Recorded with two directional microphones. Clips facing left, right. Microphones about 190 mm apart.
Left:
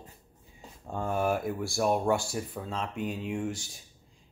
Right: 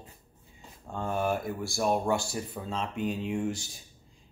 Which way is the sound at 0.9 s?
5° left (ahead or behind).